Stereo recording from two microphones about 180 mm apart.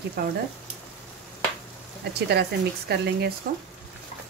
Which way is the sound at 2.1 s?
65° right (ahead or behind).